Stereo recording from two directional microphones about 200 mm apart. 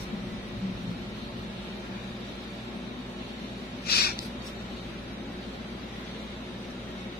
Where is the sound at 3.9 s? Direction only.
50° left (ahead or behind).